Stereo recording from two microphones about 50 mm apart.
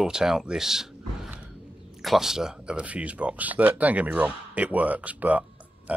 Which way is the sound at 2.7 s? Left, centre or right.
Right.